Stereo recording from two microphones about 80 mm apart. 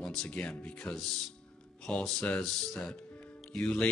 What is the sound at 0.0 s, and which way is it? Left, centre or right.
Speech, centre.